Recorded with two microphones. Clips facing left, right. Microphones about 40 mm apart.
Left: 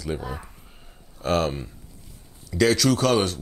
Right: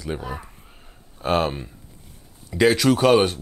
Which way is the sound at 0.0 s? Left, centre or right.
Right.